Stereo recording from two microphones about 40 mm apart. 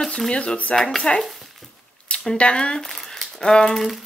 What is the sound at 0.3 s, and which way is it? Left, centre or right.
Speech, left.